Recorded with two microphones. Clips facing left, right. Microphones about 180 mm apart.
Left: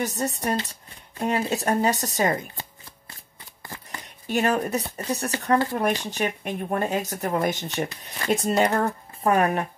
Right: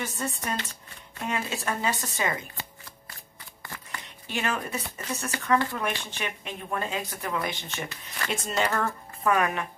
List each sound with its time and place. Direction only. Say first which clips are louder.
0.0 s speech: left 6 dB; 40° left (ahead or behind)
3.6 s a sound: left 2 dB; 30° left (ahead or behind)
4.3 s speech: left 8 dB; 40° left (ahead or behind)